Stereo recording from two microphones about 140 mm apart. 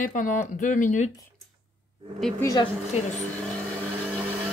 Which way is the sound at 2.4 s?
30° left (ahead or behind).